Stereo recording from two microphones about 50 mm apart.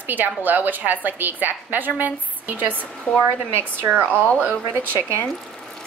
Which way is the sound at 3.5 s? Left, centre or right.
Right.